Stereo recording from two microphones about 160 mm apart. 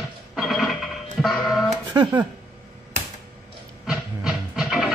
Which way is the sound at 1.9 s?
25° right (ahead or behind).